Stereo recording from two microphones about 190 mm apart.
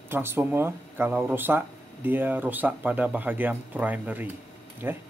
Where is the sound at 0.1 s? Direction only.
10° right (ahead or behind).